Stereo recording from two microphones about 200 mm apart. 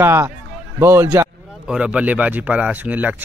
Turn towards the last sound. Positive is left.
turn(degrees=-10)  # may be behind; listen again after turning